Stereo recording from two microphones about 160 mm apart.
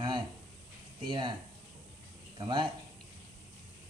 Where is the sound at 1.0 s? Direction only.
30° right (ahead or behind).